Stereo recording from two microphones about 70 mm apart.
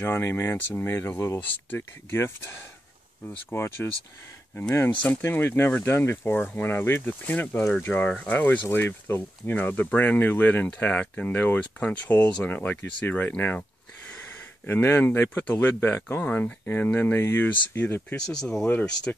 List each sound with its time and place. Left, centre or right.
0.1 s speech: left
8.6 s speech: left
13.4 s a sound: left
14.7 s speech: left
18.1 s speech: centre
19.1 s speech: left